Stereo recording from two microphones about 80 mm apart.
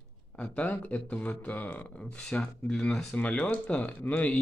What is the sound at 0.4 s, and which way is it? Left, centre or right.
Speech, centre.